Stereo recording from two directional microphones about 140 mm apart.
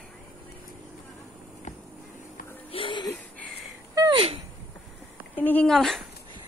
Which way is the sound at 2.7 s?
35° left (ahead or behind).